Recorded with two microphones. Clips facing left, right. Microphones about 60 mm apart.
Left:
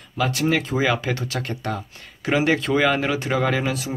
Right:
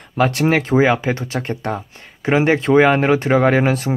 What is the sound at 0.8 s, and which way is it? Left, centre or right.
Speech, right.